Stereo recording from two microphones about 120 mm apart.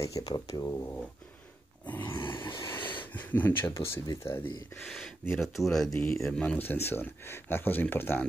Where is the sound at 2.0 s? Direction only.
45° left (ahead or behind).